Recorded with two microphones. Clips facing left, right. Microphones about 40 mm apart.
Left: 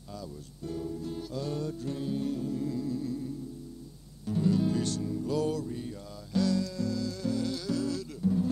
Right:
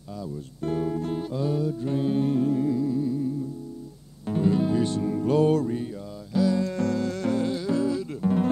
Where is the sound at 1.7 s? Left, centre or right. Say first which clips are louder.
Right 9 dB; right.